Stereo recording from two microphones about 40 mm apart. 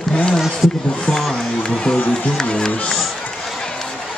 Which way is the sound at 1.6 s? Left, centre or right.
Left.